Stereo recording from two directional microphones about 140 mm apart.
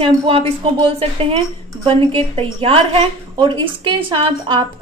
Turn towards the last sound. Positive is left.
turn(degrees=-35)  # may be behind; listen again after turning